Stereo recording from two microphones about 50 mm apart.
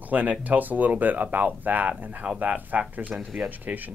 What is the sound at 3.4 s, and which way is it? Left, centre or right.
Speech, right.